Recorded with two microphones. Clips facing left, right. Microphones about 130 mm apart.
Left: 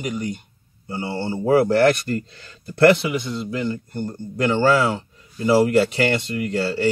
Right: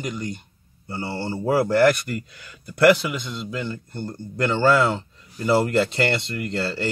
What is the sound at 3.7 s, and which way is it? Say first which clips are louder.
A man's voice: left 4 dB; 15° left (ahead or behind).